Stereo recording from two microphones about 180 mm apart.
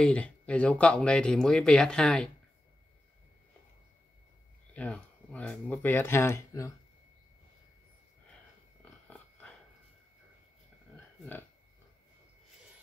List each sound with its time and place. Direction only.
0.0 s speech: 5° left (ahead or behind)
4.7 s speech: 5° left (ahead or behind)
9.0 s a sound: 5° left (ahead or behind)